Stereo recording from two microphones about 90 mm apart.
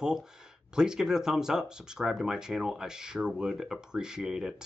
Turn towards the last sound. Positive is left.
turn(degrees=-5)  # may be behind; listen again after turning